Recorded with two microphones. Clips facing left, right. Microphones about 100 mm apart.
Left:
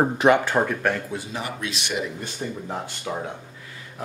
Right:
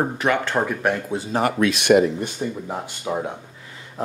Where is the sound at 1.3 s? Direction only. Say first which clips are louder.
Right 15 dB; 55° right (ahead or behind).